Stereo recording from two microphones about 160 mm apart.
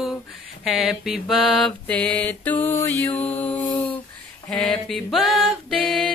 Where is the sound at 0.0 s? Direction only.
Centre (ahead or behind).